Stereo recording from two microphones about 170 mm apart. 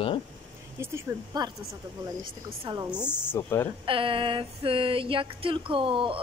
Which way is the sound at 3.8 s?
30° right (ahead or behind).